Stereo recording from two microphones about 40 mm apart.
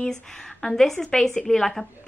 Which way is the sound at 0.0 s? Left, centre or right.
Centre.